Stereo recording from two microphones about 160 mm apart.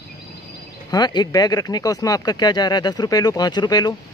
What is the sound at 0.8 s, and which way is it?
Speech, 25° left (ahead or behind).